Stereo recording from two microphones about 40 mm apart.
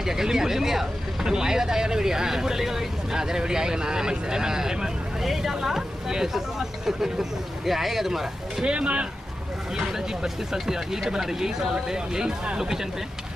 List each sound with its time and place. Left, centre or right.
0.0 s speech: centre
8.6 s speech: right
9.8 s speech: centre